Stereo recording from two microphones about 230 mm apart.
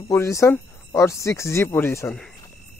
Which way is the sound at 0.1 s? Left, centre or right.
Centre.